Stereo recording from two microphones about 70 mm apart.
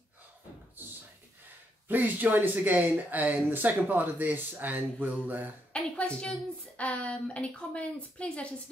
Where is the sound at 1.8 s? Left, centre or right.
Right.